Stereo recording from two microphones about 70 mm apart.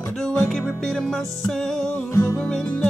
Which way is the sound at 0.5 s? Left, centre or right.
Centre.